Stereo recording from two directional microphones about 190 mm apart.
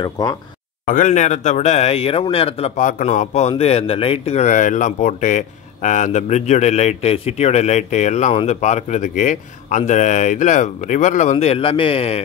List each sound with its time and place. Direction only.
0.0 s speech: 20° left (ahead or behind)
0.8 s a man's voice: 40° left (ahead or behind)